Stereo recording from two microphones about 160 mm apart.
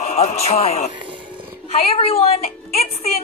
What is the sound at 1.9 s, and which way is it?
A woman's voice, 35° left (ahead or behind).